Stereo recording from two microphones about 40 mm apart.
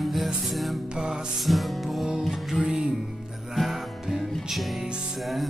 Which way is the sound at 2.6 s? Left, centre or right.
Right.